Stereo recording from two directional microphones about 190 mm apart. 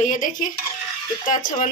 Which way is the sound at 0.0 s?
45° left (ahead or behind).